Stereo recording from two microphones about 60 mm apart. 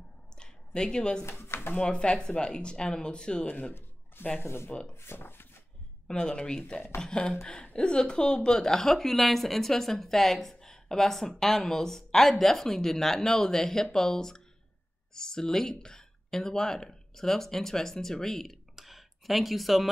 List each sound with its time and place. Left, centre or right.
0.4 s a sound: centre
1.2 s speech: left
1.7 s a woman's voice: centre
4.4 s speech: left
6.0 s a woman's voice: centre